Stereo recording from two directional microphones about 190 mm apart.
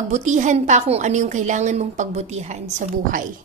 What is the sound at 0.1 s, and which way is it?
A woman's voice, 40° right (ahead or behind).